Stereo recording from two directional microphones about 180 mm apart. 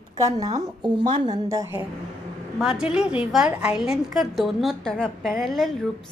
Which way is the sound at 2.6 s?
5° right (ahead or behind).